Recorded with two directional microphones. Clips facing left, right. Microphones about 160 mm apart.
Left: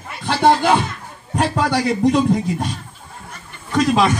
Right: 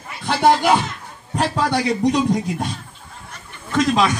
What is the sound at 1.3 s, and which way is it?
A man's voice, 5° left (ahead or behind).